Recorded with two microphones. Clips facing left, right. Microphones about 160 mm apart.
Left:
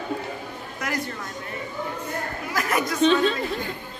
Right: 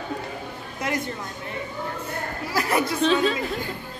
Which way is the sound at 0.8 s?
25° right (ahead or behind).